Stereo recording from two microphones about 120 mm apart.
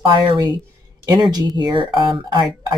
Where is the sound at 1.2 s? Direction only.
35° right (ahead or behind).